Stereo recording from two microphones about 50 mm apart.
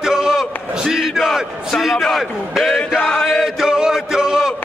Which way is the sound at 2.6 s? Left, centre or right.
Centre.